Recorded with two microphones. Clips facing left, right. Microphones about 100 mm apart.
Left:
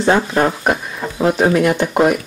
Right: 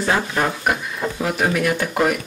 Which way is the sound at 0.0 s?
30° left (ahead or behind).